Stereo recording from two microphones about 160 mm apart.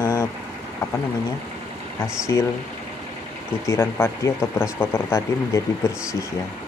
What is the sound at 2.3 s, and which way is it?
Speech, 20° left (ahead or behind).